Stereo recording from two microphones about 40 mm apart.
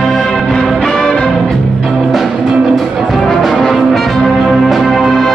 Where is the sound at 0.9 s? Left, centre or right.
Centre.